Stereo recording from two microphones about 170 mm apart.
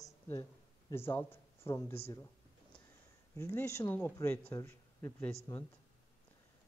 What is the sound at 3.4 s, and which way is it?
Speech, 15° left (ahead or behind).